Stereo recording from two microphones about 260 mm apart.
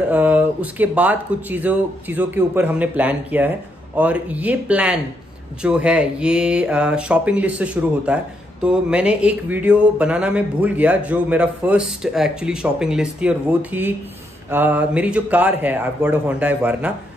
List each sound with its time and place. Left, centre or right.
0.1 s speech: centre